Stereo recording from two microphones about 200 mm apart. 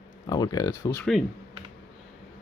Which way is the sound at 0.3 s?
20° left (ahead or behind).